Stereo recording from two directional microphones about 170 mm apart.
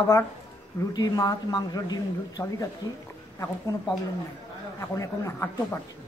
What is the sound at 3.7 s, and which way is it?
Speech, 15° left (ahead or behind).